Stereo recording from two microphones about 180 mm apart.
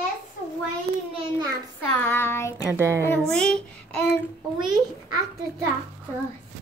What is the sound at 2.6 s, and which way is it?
Speech, 15° right (ahead or behind).